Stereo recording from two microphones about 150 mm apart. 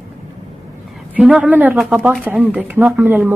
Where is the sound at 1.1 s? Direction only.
5° right (ahead or behind).